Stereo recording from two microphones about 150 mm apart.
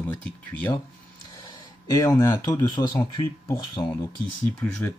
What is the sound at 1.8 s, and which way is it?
Speech, 20° left (ahead or behind).